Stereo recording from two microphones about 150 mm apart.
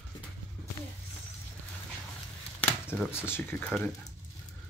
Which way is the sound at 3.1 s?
15° left (ahead or behind).